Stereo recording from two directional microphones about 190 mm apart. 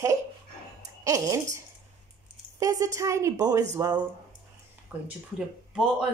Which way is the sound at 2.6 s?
20° right (ahead or behind).